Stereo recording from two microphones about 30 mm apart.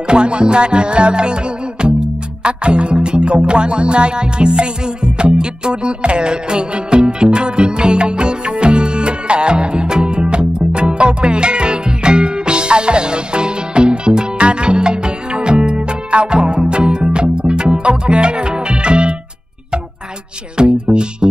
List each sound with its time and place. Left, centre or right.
0.0 s music: right
20.5 s music: right